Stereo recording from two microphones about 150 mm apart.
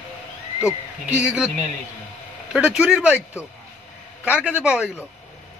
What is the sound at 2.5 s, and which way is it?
Speech, 5° right (ahead or behind).